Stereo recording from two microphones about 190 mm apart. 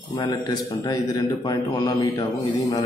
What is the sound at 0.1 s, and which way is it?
A man's voice, 25° left (ahead or behind).